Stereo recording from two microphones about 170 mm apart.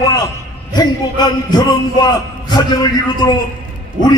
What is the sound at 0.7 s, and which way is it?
Speech, 25° left (ahead or behind).